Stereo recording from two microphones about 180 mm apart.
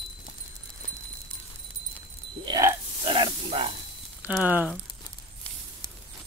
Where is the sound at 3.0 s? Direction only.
30° right (ahead or behind).